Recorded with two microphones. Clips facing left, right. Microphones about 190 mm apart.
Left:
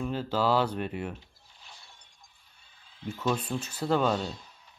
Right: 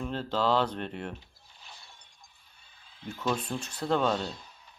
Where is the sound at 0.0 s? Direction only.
5° left (ahead or behind).